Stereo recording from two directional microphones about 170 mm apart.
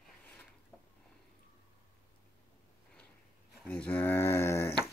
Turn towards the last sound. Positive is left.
turn(degrees=15)  # may be behind; listen again after turning